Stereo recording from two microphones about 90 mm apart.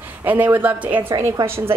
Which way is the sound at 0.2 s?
20° right (ahead or behind).